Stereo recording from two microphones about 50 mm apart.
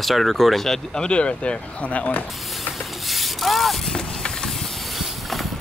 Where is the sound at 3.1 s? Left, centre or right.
Centre.